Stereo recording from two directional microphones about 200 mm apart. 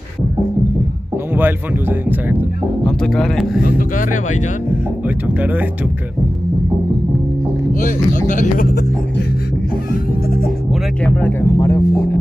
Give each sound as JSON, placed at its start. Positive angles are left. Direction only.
{"t": 1.3, "sound": "speech", "side_deg": -10}
{"t": 2.8, "sound": "speech", "side_deg": 5}
{"t": 3.6, "sound": "speech", "side_deg": 45}
{"t": 5.0, "sound": "speech", "side_deg": -10}
{"t": 7.8, "sound": "speech", "side_deg": 40}
{"t": 11.1, "sound": "speech", "side_deg": 10}